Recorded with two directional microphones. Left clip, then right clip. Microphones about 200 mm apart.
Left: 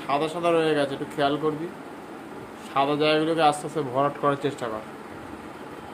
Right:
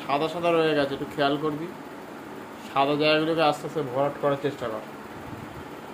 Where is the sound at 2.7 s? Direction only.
5° left (ahead or behind).